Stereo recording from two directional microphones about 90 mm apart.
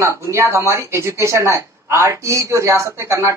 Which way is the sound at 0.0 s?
30° right (ahead or behind).